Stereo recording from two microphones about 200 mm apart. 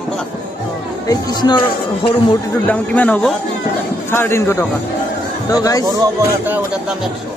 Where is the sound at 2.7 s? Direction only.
5° left (ahead or behind).